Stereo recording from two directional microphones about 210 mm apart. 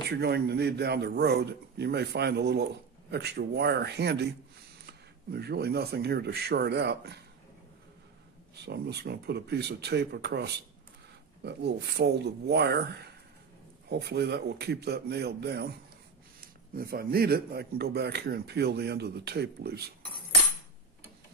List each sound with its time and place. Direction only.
0.1 s a man's voice: 50° right (ahead or behind)
8.5 s a man's voice: 50° right (ahead or behind)
16.7 s a man's voice: 45° right (ahead or behind)